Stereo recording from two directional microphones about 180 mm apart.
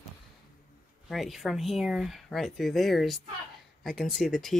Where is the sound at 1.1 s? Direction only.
Centre (ahead or behind).